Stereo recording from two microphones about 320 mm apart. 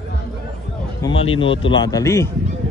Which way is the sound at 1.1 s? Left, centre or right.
Left.